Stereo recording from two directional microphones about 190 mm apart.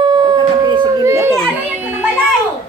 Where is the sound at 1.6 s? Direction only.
10° right (ahead or behind).